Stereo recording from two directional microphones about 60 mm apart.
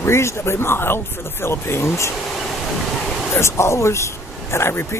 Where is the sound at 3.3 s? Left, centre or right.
Left.